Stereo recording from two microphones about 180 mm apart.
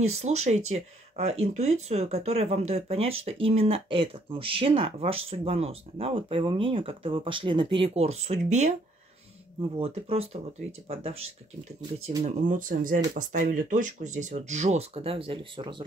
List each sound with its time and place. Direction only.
0.0 s speech: 35° right (ahead or behind)
9.8 s speech: 35° right (ahead or behind)